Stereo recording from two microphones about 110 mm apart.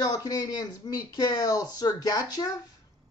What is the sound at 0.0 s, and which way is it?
Speech, 35° left (ahead or behind).